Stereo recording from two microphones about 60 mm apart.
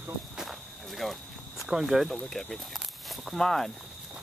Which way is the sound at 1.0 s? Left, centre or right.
Centre.